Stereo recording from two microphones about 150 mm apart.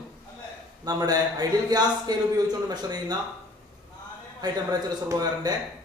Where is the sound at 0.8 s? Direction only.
25° right (ahead or behind).